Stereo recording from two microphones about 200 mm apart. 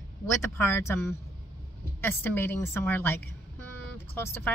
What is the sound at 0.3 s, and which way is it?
Speech, 15° left (ahead or behind).